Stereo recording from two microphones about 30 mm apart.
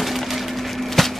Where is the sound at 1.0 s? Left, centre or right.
Centre.